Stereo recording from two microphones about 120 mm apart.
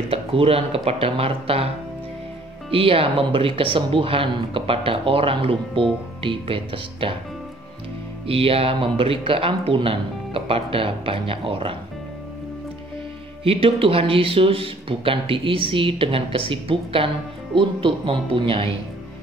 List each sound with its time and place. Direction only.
0.1 s speech: 55° right (ahead or behind)
2.7 s speech: 50° right (ahead or behind)
8.3 s speech: 50° right (ahead or behind)
13.4 s speech: 50° right (ahead or behind)